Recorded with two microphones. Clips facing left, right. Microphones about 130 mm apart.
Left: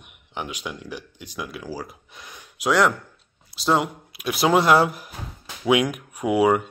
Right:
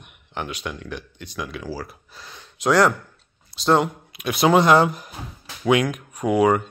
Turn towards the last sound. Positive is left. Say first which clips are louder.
# right 1 dB
turn(degrees=10)  # may be behind; listen again after turning